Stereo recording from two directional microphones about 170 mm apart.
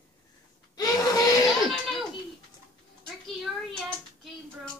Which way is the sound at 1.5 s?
Centre (ahead or behind).